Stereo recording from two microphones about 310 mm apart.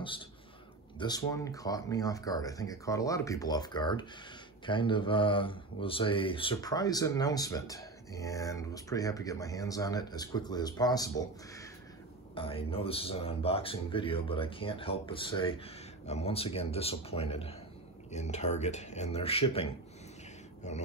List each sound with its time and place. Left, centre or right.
0.9 s speech: centre